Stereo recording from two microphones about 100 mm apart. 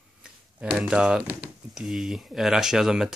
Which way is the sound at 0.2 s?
10° right (ahead or behind).